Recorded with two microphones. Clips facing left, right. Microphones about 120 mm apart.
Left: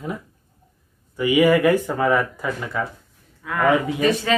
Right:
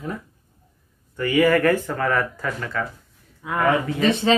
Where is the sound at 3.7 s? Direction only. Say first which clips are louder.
Left 3 dB; 15° left (ahead or behind).